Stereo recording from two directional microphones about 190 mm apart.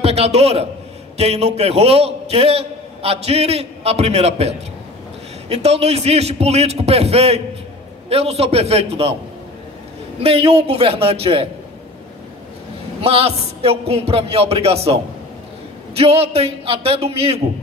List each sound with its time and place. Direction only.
0.0 s a man's voice: 35° right (ahead or behind)
10.2 s a man's voice: 30° right (ahead or behind)
13.0 s a man's voice: 30° right (ahead or behind)
16.0 s a man's voice: 30° right (ahead or behind)